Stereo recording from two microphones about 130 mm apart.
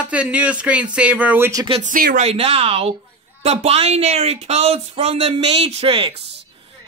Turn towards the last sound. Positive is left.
turn(degrees=-45)  # may be behind; listen again after turning